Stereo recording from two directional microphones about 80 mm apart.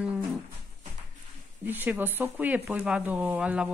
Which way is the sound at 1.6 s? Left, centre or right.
Right.